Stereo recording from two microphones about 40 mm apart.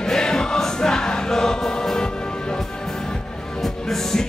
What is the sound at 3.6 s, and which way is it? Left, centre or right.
Music, centre.